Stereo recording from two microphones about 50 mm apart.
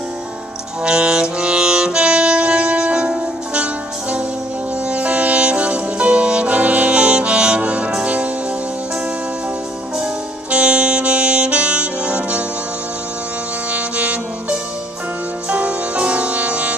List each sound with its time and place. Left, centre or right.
0.8 s saxophone: centre
4.8 s saxophone: right
8.0 s music: right
10.5 s saxophone: right
13.7 s music: right